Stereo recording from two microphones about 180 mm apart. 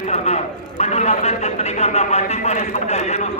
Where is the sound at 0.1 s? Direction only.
40° left (ahead or behind).